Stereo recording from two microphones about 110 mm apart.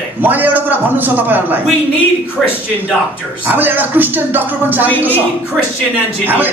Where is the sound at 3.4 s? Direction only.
15° right (ahead or behind).